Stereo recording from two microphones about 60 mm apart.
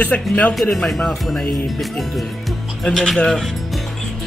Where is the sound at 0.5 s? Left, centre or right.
Centre.